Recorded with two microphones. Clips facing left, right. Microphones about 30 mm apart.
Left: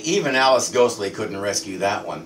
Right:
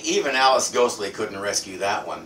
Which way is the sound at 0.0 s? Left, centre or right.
Centre.